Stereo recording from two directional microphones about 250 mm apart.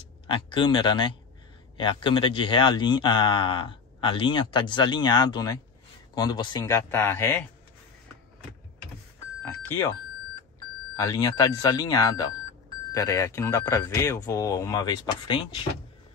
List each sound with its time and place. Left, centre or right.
0.3 s speech: centre
9.4 s speech: centre
11.0 s speech: centre